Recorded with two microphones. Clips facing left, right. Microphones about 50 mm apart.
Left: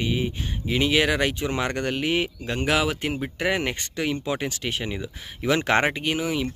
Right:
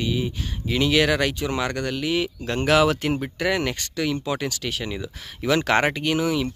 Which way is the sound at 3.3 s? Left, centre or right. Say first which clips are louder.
Right 1 dB; left.